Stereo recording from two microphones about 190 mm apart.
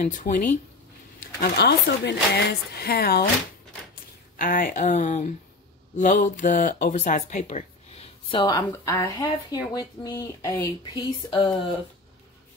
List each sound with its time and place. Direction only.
0.0 s speech: 40° left (ahead or behind)
1.4 s speech: 60° left (ahead or behind); by 11.7 s 25° left (ahead or behind)